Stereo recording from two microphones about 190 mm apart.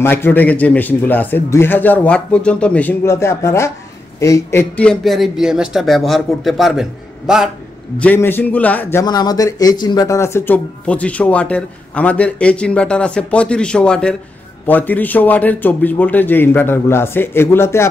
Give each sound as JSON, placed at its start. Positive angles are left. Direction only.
{"t": 0.0, "sound": "a man's voice", "side_deg": 10}
{"t": 8.0, "sound": "speech", "side_deg": 10}
{"t": 9.0, "sound": "speech", "side_deg": 20}